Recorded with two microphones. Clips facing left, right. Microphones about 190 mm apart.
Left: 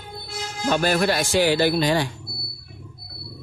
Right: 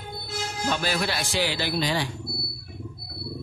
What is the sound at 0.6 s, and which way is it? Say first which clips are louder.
Speech: left 7 dB; 50° left (ahead or behind).